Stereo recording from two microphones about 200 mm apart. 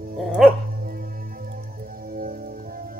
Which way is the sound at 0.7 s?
45° right (ahead or behind).